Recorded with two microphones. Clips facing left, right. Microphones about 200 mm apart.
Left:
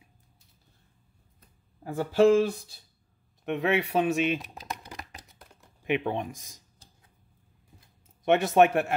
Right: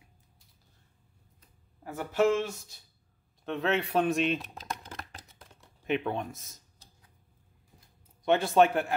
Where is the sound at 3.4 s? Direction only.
15° left (ahead or behind).